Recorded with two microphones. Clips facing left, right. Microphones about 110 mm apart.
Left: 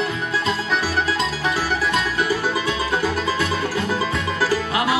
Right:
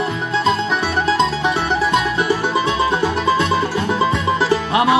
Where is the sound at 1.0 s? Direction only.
25° right (ahead or behind).